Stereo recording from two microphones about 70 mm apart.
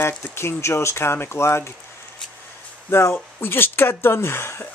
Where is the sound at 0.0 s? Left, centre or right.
Left.